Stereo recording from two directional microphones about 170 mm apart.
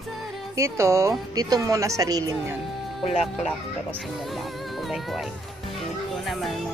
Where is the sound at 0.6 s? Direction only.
15° right (ahead or behind).